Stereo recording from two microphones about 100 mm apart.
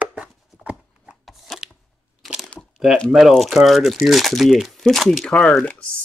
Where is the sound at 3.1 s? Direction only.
Centre (ahead or behind).